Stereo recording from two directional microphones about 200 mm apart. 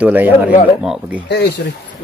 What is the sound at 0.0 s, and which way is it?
Speech, 10° right (ahead or behind).